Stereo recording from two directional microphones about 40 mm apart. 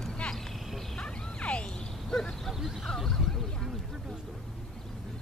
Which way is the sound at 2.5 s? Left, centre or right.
Centre.